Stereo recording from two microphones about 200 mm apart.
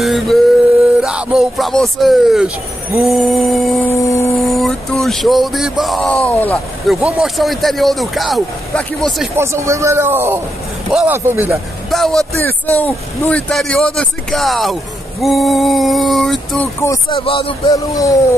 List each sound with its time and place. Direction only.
0.0 s male singing: centre (ahead or behind)
1.0 s a sound: centre (ahead or behind)
9.3 s speech: 15° right (ahead or behind)
11.9 s a sound: centre (ahead or behind)
16.8 s speech: 15° left (ahead or behind)
17.2 s speech: 25° left (ahead or behind)